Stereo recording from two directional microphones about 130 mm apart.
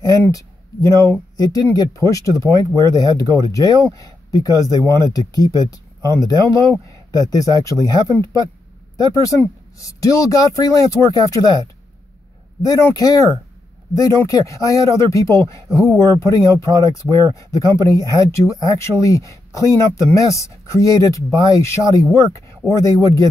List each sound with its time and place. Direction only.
0.3 s speech: 25° left (ahead or behind)
12.6 s speech: 25° left (ahead or behind)